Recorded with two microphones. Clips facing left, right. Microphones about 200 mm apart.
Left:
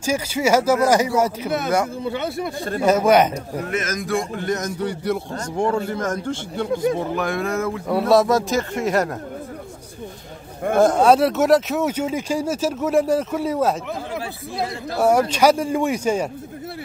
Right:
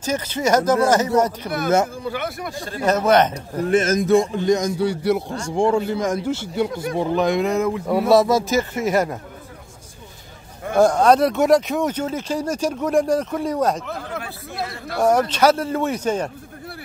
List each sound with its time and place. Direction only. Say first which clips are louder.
0.0 s speech: left 1 dB; 10° left (ahead or behind)
2.0 s speech: left 2 dB; 25° left (ahead or behind)
2.8 s speech: left 1 dB; 10° left (ahead or behind)
3.6 s a man's voice: right 11 dB; 30° right (ahead or behind); by 8.1 s 15° right (ahead or behind)
8.1 s speech: right 1 dB; centre (ahead or behind)
10.8 s speech: even; 5° left (ahead or behind)
15.0 s speech: even; 10° left (ahead or behind)